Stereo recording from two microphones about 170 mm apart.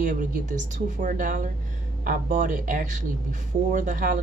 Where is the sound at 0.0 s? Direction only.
45° right (ahead or behind).